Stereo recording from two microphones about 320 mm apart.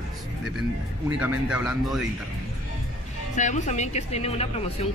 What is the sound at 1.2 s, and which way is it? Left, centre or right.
Speech, centre.